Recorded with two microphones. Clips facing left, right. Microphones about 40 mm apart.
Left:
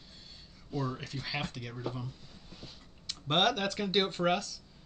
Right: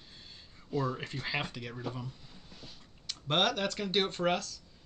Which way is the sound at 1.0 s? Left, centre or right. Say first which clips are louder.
Right 2 dB; right.